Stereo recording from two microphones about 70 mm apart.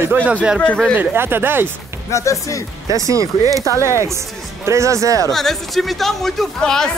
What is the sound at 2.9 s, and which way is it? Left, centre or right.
Speech, right.